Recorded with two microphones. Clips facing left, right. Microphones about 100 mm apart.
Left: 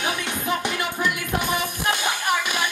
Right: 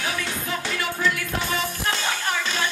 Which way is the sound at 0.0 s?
20° left (ahead or behind).